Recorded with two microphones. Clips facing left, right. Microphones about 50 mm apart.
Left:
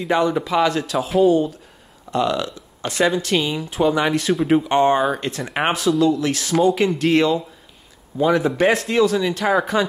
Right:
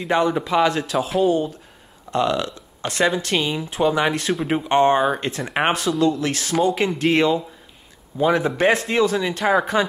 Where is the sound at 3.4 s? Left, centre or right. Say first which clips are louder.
Left 1 dB; centre.